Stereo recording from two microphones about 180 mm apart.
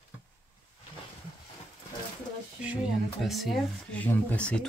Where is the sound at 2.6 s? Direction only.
5° right (ahead or behind).